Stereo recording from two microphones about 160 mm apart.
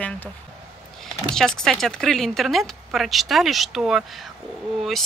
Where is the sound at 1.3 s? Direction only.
5° left (ahead or behind).